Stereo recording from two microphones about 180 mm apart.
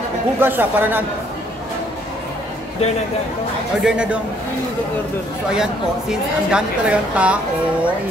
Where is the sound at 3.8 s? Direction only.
5° right (ahead or behind).